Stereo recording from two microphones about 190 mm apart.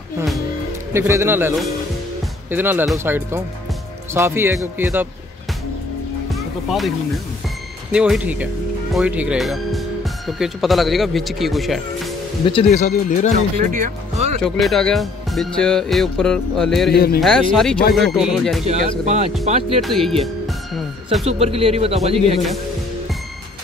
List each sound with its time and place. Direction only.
0.9 s speech: 15° right (ahead or behind)
2.5 s speech: 10° right (ahead or behind)
6.3 s music: centre (ahead or behind)
7.9 s speech: 5° right (ahead or behind)
12.4 s speech: 30° left (ahead or behind)
13.6 s speech: 45° right (ahead or behind)
14.4 s speech: centre (ahead or behind)
16.9 s speech: 55° left (ahead or behind)
17.2 s speech: centre (ahead or behind)
18.7 s speech: 40° right (ahead or behind)
19.8 s speech: centre (ahead or behind)
20.4 s music: centre (ahead or behind)
21.2 s speech: 30° right (ahead or behind)